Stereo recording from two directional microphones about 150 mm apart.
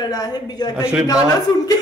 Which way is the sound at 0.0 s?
25° left (ahead or behind).